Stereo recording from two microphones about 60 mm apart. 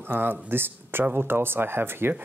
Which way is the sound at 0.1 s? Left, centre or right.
Right.